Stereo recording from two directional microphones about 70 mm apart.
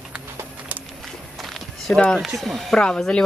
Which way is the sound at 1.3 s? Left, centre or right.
Centre.